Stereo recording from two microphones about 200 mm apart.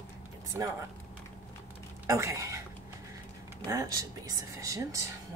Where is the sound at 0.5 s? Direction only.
15° right (ahead or behind).